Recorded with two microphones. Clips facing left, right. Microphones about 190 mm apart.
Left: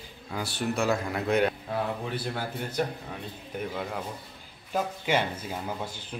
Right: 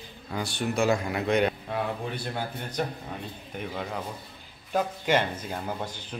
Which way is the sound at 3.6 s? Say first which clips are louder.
Left 1 dB; centre (ahead or behind).